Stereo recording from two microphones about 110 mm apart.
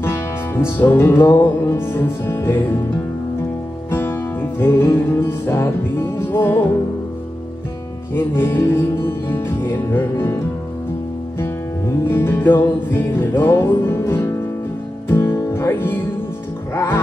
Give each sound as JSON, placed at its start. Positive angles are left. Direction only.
{"t": 0.0, "sound": "music", "side_deg": 20}
{"t": 3.9, "sound": "music", "side_deg": 20}
{"t": 8.1, "sound": "music", "side_deg": 20}